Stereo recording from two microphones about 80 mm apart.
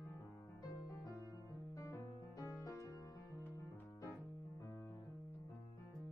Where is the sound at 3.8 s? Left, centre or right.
Left.